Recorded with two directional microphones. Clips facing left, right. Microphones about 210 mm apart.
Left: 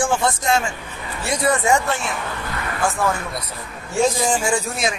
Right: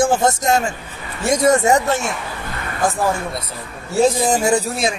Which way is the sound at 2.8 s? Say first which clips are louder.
Right 3 dB; 35° right (ahead or behind).